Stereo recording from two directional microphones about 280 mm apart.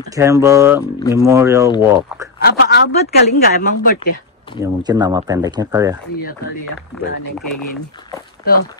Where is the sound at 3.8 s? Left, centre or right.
Left.